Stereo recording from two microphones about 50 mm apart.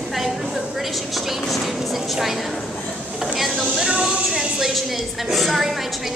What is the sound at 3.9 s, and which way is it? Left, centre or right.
Speech, centre.